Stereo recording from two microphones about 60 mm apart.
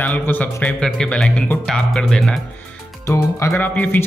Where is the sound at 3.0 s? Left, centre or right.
Left.